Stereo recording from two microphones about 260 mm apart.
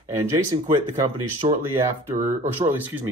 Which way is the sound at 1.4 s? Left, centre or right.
Right.